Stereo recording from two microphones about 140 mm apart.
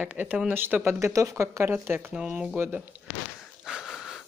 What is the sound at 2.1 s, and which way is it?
Speech, 5° right (ahead or behind).